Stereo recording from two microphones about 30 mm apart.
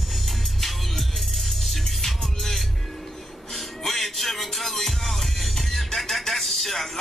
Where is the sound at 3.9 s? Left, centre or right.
Centre.